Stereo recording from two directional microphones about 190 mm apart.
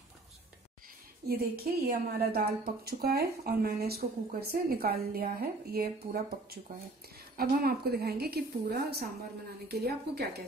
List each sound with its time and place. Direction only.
1.2 s a woman's voice: 55° right (ahead or behind)